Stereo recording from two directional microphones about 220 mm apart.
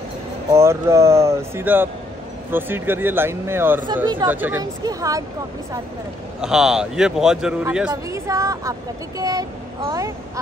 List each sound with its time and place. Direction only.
0.5 s speech: 10° right (ahead or behind)
3.8 s speech: 20° right (ahead or behind)
4.3 s speech: 10° right (ahead or behind)
6.4 s a man's voice: centre (ahead or behind)